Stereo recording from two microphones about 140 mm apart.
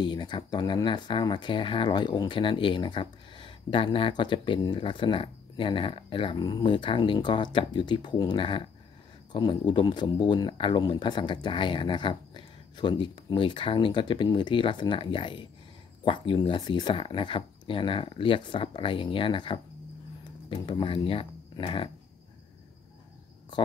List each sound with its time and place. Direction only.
0.0 s speech: 35° left (ahead or behind)